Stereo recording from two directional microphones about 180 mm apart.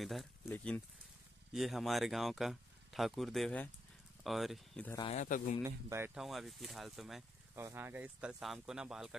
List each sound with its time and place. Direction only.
0.0 s speech: centre (ahead or behind)
5.0 s speech: 40° left (ahead or behind)
5.6 s speech: 15° right (ahead or behind)
6.2 s speech: centre (ahead or behind)
7.5 s speech: 10° right (ahead or behind)